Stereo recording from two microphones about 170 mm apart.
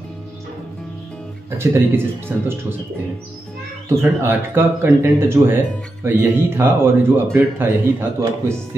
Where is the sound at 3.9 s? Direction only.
15° right (ahead or behind).